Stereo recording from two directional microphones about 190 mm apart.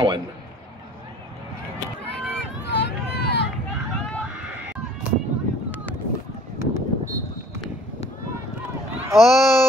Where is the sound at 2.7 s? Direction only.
65° left (ahead or behind).